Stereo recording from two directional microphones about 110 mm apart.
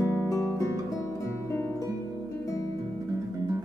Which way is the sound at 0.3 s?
25° left (ahead or behind).